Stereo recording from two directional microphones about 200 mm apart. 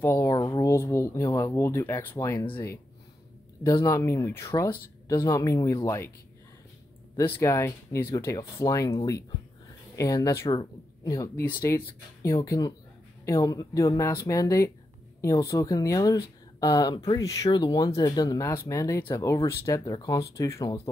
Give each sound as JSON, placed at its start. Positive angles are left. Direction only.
{"t": 0.0, "sound": "a sound", "side_deg": 10}
{"t": 3.6, "sound": "speech", "side_deg": 15}
{"t": 7.3, "sound": "speech", "side_deg": 15}